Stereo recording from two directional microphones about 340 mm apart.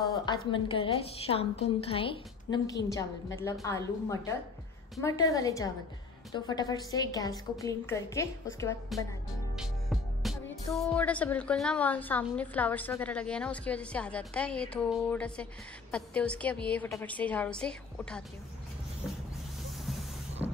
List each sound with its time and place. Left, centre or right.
0.0 s a woman's voice: centre
20.4 s music: centre